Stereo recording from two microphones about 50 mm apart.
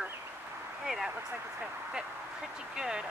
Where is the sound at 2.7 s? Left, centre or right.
Centre.